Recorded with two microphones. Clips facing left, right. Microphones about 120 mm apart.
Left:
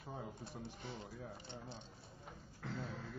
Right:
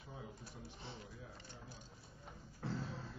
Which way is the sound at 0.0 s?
50° left (ahead or behind).